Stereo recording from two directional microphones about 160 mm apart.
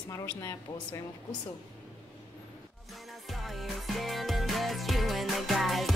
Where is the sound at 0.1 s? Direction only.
20° left (ahead or behind).